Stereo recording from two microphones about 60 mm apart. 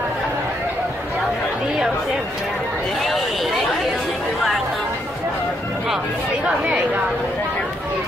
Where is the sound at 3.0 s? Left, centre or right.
Centre.